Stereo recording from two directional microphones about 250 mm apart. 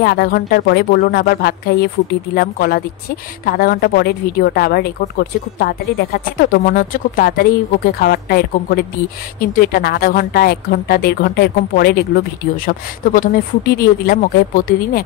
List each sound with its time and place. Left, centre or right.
0.0 s a woman's voice: left